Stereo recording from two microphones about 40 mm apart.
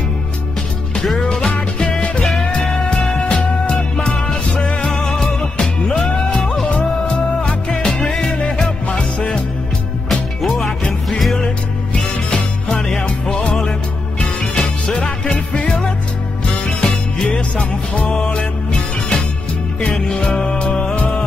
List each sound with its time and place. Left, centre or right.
1.8 s music: left
2.2 s music: centre
3.3 s music: left
5.9 s music: left
8.1 s music: centre
8.4 s music: left
10.0 s music: centre
13.5 s music: left